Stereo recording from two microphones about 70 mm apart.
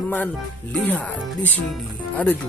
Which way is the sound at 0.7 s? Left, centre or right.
Left.